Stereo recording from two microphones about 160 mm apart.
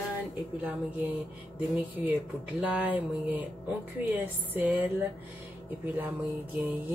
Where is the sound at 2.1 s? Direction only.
10° right (ahead or behind).